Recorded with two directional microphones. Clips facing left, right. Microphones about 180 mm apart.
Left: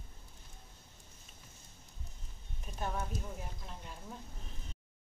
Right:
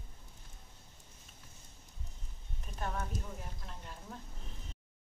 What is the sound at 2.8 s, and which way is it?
Speech, 5° left (ahead or behind).